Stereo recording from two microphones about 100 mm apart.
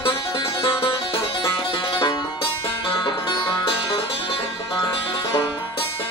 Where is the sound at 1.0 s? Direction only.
60° left (ahead or behind).